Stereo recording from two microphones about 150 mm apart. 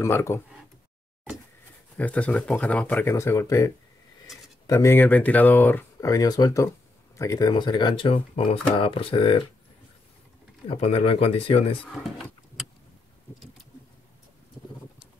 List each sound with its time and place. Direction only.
0.0 s speech: 20° left (ahead or behind)
2.0 s speech: 10° left (ahead or behind)
5.9 s speech: 25° left (ahead or behind)
10.7 s speech: 45° left (ahead or behind)